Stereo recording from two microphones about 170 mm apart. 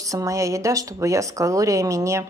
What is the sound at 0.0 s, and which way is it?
A woman's voice, 20° right (ahead or behind).